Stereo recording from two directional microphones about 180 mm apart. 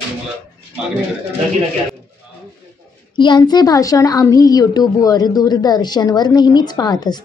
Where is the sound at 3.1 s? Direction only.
25° left (ahead or behind).